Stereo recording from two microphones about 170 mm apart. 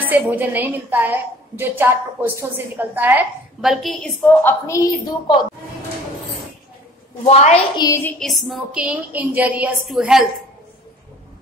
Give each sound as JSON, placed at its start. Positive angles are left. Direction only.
{"t": 0.0, "sound": "a woman's voice", "side_deg": -10}
{"t": 4.3, "sound": "a woman's voice", "side_deg": 10}
{"t": 7.2, "sound": "a woman's voice", "side_deg": 40}
{"t": 7.7, "sound": "a woman's voice", "side_deg": 20}
{"t": 8.2, "sound": "a woman's voice", "side_deg": 0}